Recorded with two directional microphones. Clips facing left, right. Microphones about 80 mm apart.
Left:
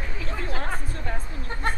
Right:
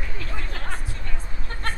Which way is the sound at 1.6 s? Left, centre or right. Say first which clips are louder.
Left 3 dB; centre.